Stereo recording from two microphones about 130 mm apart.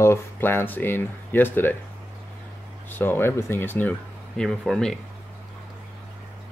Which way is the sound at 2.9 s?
15° left (ahead or behind).